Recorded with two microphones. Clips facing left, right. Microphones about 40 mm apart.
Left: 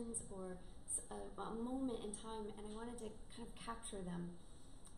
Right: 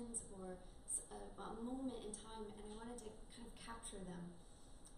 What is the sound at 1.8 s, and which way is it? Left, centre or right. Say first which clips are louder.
A woman's voice: left 4 dB; centre.